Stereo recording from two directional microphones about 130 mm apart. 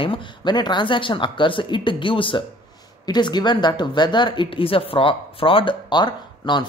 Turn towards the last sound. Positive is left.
turn(degrees=35)  # may be behind; listen again after turning